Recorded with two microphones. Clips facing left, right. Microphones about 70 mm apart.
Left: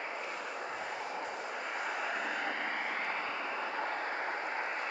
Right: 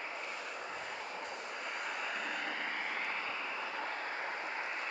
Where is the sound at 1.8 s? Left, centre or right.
Left.